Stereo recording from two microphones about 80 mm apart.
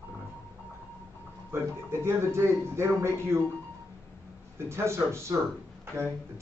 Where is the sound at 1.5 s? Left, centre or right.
Right.